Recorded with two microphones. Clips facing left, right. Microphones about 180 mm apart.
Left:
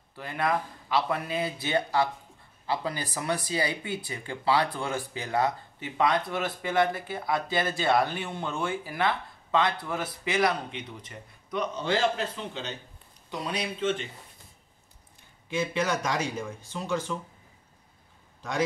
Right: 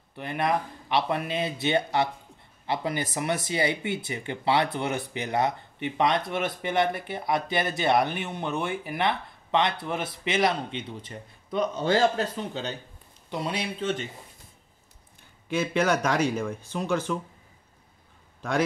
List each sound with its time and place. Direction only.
0.1 s speech: 20° right (ahead or behind); by 12.7 s 40° right (ahead or behind)
13.3 s speech: 25° right (ahead or behind)
15.5 s speech: 55° right (ahead or behind)